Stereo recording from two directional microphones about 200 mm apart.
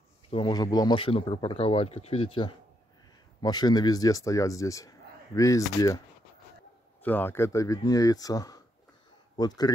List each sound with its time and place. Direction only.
0.3 s a man's voice: 25° left (ahead or behind)
7.0 s a man's voice: 10° left (ahead or behind)